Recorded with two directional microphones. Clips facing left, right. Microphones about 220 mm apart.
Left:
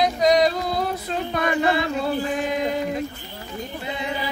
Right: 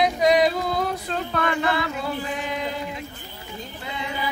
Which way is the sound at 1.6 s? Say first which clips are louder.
Left 4 dB; 25° left (ahead or behind).